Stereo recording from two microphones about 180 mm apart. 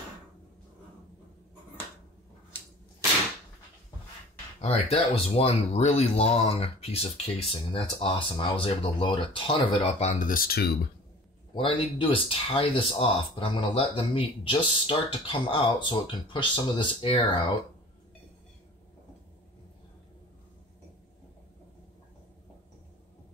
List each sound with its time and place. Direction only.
4.6 s speech: 35° left (ahead or behind); by 10.7 s 55° left (ahead or behind)
11.5 s speech: 30° left (ahead or behind)